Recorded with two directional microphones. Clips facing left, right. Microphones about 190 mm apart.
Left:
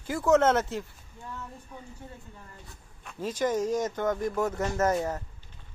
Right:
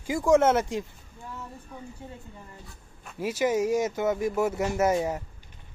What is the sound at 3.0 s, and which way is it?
Speech, 10° right (ahead or behind).